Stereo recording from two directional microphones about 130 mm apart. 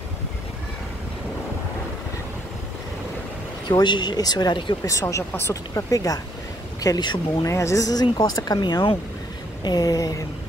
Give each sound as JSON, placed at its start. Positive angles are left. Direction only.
{"t": 3.6, "sound": "speech", "side_deg": 35}
{"t": 4.8, "sound": "speech", "side_deg": 25}
{"t": 7.4, "sound": "speech", "side_deg": 25}